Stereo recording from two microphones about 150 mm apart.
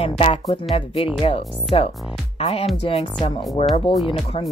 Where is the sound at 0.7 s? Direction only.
40° left (ahead or behind).